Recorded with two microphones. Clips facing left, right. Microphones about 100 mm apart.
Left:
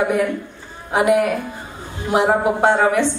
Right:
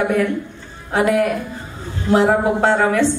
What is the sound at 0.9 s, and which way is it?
A woman's voice, 15° left (ahead or behind).